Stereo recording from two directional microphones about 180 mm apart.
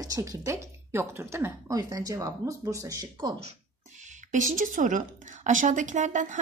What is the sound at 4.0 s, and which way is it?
A woman's voice, 45° right (ahead or behind).